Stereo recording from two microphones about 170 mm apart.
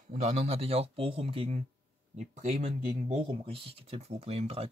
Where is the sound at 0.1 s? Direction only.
40° right (ahead or behind).